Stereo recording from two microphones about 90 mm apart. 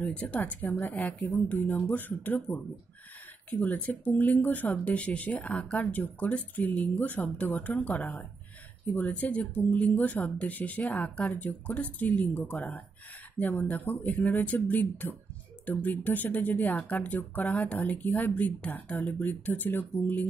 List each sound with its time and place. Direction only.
0.0 s speech: 15° left (ahead or behind)